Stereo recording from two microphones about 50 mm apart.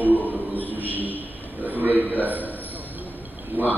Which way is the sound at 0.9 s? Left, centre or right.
Right.